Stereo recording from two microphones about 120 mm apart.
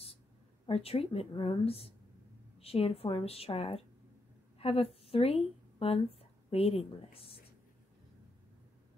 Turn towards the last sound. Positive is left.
turn(degrees=50)  # may be behind; listen again after turning